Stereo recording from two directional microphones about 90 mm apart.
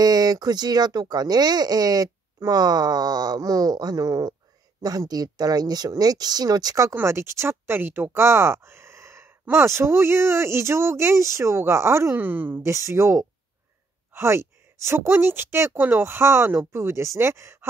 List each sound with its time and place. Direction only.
0.0 s speech: 45° right (ahead or behind)
6.9 s speech: 25° right (ahead or behind)